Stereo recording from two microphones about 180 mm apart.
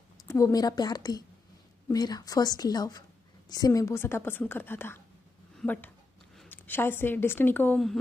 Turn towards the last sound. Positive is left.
turn(degrees=5)  # may be behind; listen again after turning